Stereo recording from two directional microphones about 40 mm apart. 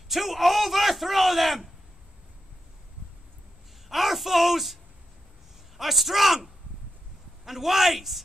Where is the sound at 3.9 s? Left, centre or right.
Centre.